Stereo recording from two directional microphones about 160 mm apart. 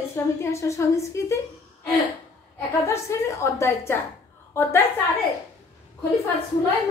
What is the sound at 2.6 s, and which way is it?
A woman's voice, 20° left (ahead or behind).